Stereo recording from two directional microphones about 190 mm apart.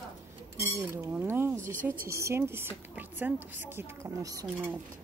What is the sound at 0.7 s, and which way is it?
Chink, 15° right (ahead or behind).